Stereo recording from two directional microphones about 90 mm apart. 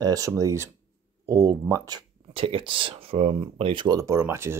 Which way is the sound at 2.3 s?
85° right.